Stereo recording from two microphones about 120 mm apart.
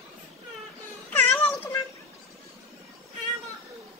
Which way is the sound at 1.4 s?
15° left (ahead or behind).